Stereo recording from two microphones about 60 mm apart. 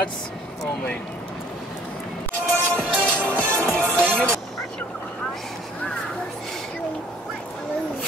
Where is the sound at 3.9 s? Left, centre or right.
Right.